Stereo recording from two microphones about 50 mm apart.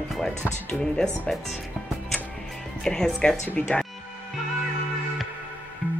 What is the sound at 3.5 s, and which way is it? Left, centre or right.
Speech, left.